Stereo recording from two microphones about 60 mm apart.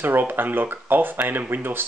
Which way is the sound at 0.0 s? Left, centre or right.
Right.